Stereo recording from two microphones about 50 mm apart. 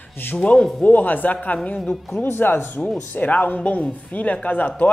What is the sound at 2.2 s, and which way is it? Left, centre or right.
Speech, left.